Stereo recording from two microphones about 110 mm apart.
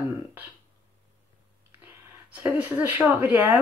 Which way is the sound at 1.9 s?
15° right (ahead or behind).